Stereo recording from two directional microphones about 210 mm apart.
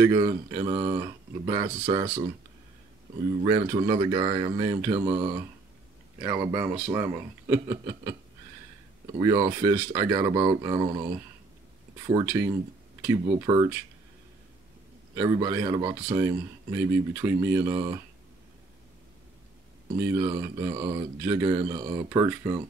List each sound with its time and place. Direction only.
0.0 s speech: 15° right (ahead or behind)
3.4 s speech: 20° right (ahead or behind)
9.2 s speech: 15° right (ahead or behind)
12.2 s speech: 15° right (ahead or behind)
15.1 s speech: 15° right (ahead or behind)
20.0 s speech: 15° right (ahead or behind)